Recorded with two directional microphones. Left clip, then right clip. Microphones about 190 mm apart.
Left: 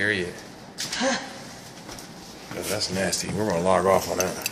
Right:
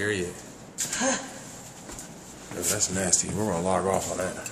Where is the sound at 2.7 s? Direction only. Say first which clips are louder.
Left 4 dB; 25° right (ahead or behind).